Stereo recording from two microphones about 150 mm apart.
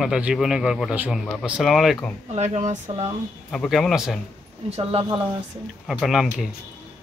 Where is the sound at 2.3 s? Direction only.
50° right (ahead or behind).